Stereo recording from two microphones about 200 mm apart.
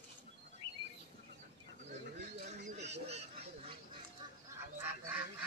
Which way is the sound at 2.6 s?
35° right (ahead or behind).